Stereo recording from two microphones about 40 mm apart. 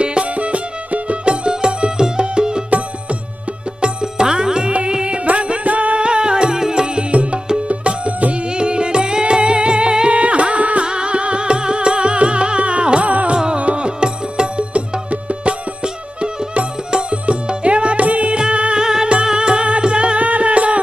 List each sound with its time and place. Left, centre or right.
0.0 s music: right
3.8 s music: right
5.9 s music: right
7.1 s music: right